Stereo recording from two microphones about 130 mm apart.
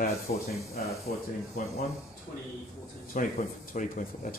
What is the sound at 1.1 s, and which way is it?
Speech, 75° left (ahead or behind).